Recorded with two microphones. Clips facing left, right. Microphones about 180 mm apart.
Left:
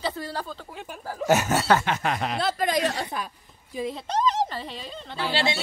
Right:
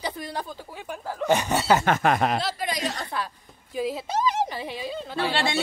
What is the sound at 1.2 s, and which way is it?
Speech, 5° left (ahead or behind).